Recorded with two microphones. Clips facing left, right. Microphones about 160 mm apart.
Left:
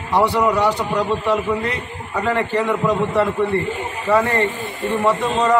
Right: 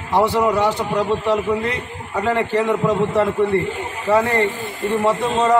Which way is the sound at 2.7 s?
35° right (ahead or behind).